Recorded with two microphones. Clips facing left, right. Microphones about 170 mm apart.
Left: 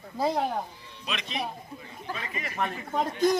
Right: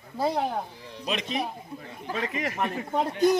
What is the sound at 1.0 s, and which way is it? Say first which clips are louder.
Speech: right 5 dB; 40° right (ahead or behind).